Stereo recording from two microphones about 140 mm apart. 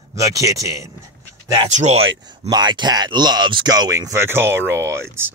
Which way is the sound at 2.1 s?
30° right (ahead or behind).